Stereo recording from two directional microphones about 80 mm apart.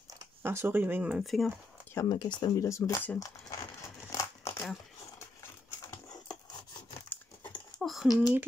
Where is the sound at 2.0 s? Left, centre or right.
Left.